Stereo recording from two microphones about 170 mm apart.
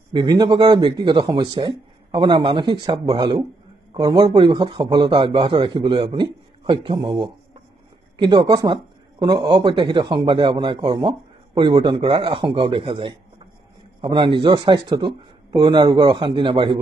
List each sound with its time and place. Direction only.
0.1 s a man's voice: 25° right (ahead or behind)